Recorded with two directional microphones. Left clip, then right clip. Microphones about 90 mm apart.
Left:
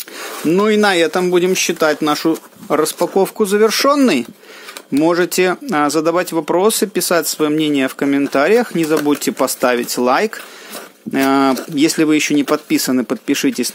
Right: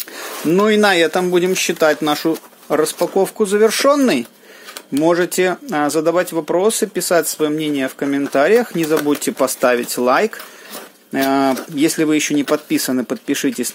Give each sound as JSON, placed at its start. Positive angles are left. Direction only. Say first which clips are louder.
{"t": 0.7, "sound": "speech", "louder": "even", "side_deg": 20}
{"t": 8.3, "sound": "speech", "louder": "right 1 dB", "side_deg": 35}